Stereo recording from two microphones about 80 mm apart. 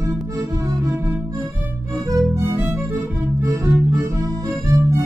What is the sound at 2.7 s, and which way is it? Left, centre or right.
Music, right.